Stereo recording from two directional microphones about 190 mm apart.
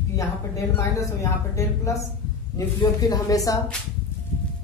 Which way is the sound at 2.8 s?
20° left (ahead or behind).